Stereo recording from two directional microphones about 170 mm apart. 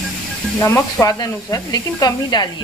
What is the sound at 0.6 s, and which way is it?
Speech, 15° left (ahead or behind).